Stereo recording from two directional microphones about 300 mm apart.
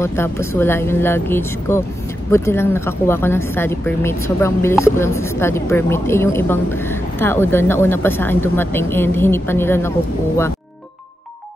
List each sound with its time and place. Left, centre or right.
0.0 s a woman's voice: centre